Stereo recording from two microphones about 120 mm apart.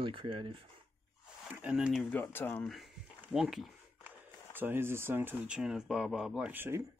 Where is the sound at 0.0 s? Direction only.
45° right (ahead or behind).